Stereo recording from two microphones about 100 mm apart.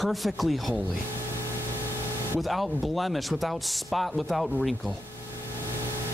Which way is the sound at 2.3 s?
Centre (ahead or behind).